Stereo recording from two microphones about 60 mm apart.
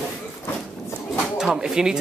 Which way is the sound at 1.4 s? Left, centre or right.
Centre.